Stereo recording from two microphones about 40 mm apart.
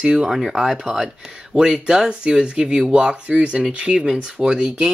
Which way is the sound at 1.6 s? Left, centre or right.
Right.